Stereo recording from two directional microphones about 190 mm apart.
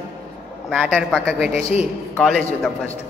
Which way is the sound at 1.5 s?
35° left (ahead or behind).